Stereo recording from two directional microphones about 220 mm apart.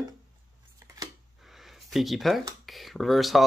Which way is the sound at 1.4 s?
Centre (ahead or behind).